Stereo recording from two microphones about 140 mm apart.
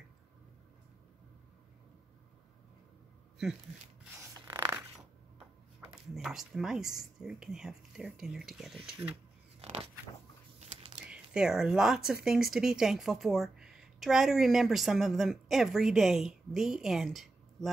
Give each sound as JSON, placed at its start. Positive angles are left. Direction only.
{"t": 6.1, "sound": "speech", "side_deg": 0}
{"t": 9.6, "sound": "a sound", "side_deg": -50}
{"t": 11.0, "sound": "speech", "side_deg": -5}